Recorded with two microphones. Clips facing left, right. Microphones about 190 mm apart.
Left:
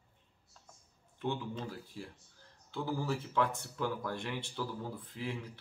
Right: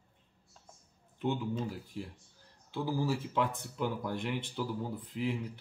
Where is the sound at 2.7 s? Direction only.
15° right (ahead or behind).